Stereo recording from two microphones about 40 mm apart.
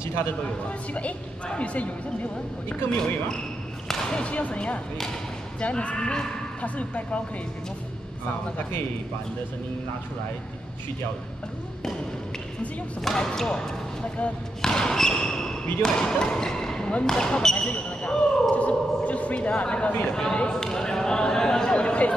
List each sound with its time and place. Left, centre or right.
0.7 s a woman's voice: left
2.7 s speech: left
4.3 s a woman's voice: left
6.6 s a woman's voice: left
13.0 s speech: centre
17.6 s basketball bounce: left
18.1 s basketball bounce: centre
18.5 s a sound: left
20.1 s speech: centre
20.5 s a sound: centre; by 22.1 s left